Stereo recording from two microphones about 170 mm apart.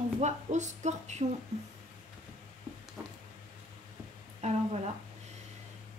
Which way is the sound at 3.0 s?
10° right (ahead or behind).